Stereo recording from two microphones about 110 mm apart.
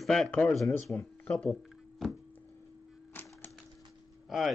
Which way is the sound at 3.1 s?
20° left (ahead or behind).